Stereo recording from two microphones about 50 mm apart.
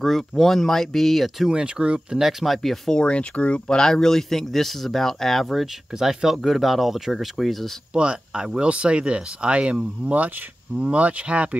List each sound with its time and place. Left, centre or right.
0.0 s speech: centre
1.5 s speech: centre
2.1 s speech: centre
3.0 s speech: left; by 7.7 s centre
7.9 s speech: centre